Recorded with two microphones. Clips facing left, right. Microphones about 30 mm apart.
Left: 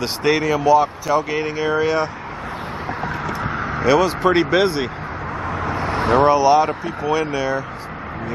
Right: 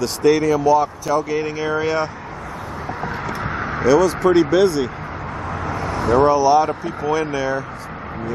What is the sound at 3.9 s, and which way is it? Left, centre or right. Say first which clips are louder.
Speech: right 1 dB; left.